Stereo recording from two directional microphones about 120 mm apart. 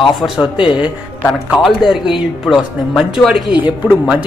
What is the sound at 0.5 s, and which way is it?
Speech, 45° left (ahead or behind).